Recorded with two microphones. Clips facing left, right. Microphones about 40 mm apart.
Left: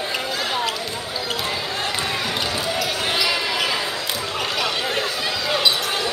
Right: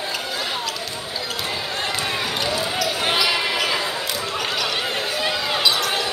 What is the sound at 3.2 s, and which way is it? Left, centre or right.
Basketball bounce, centre.